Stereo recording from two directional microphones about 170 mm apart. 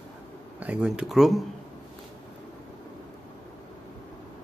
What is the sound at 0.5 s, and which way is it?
Speech, 5° right (ahead or behind).